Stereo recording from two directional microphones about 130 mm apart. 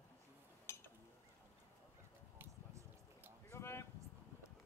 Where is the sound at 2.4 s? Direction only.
15° right (ahead or behind).